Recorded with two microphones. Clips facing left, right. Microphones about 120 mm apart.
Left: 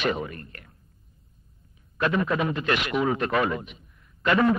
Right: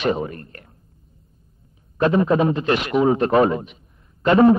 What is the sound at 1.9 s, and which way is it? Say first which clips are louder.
A man's voice: right 7 dB; 30° right (ahead or behind).